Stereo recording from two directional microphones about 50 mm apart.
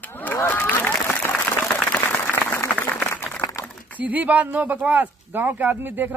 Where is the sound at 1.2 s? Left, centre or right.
Left.